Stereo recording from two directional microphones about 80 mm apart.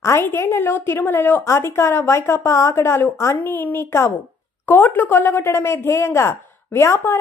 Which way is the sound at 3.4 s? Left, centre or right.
Left.